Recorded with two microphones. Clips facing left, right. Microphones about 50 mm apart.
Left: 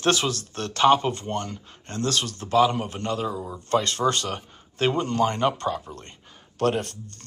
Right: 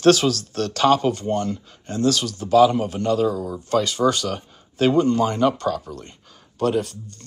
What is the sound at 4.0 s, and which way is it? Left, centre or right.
Speech, left.